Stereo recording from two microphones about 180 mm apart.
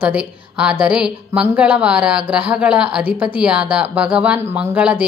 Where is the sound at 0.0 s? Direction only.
5° right (ahead or behind).